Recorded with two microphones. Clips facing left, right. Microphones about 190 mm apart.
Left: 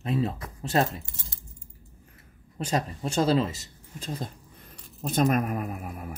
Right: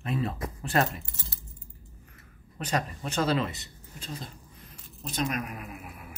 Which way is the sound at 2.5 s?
30° left (ahead or behind).